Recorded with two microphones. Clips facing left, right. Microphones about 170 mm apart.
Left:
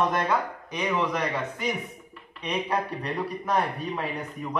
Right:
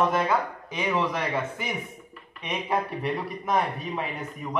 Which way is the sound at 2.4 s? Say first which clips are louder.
Even; 5° right (ahead or behind).